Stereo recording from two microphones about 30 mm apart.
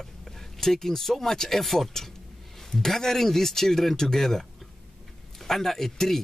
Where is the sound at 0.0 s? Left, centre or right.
Centre.